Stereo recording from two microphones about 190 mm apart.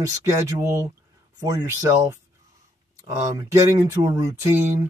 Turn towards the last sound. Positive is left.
turn(degrees=-15)  # may be behind; listen again after turning